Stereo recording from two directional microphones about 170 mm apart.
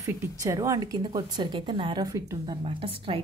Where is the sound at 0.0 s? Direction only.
20° right (ahead or behind).